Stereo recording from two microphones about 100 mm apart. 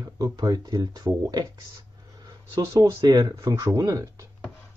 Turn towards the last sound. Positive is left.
turn(degrees=-30)  # may be behind; listen again after turning